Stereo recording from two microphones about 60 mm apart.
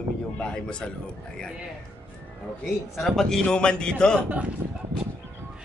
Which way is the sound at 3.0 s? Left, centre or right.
Centre.